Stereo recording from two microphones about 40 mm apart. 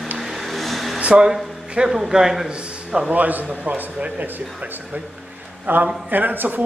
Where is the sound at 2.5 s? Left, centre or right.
Right.